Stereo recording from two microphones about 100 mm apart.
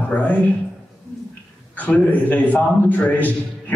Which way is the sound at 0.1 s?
15° left (ahead or behind).